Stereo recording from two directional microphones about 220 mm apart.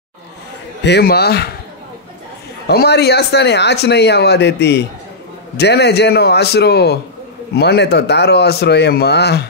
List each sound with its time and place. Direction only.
0.8 s speech: 50° left (ahead or behind)
2.6 s speech: 50° left (ahead or behind)